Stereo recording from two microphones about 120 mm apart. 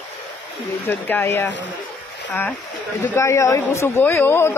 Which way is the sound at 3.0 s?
20° left (ahead or behind).